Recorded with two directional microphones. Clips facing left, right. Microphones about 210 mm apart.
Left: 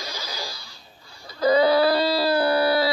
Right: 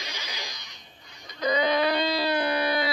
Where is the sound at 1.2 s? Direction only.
35° left (ahead or behind).